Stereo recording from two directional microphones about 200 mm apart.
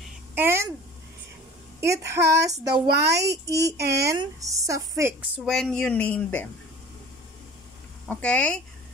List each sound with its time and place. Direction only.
0.0 s a sound: 10° right (ahead or behind)
1.8 s a woman's voice: 15° right (ahead or behind); by 6.5 s 10° left (ahead or behind)
8.1 s speech: 5° left (ahead or behind)